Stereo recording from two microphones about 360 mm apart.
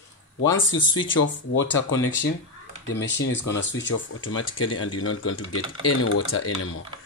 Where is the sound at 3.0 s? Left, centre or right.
Left.